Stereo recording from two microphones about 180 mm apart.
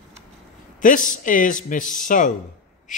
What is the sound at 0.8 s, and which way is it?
Speech, 45° left (ahead or behind).